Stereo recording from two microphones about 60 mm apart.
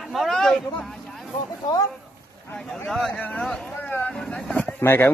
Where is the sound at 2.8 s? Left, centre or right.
Centre.